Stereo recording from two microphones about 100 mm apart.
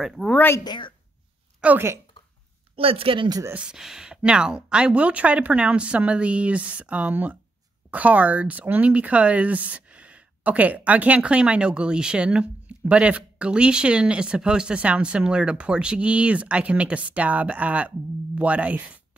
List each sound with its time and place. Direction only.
0.0 s speech: 5° right (ahead or behind)
0.3 s speech: 20° left (ahead or behind)
0.7 s a woman's voice: 55° left (ahead or behind)
1.6 s speech: 15° right (ahead or behind)
2.7 s speech: 70° right (ahead or behind)
3.5 s speech: 5° right (ahead or behind)